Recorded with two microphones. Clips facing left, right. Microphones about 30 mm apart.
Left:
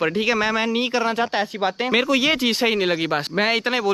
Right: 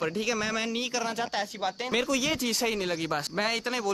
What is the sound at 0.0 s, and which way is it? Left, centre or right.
Speech, left.